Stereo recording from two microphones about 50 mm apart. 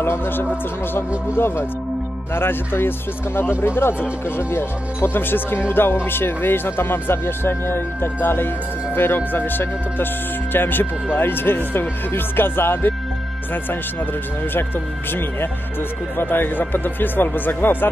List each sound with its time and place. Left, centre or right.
0.0 s speech: left
14.5 s speech: left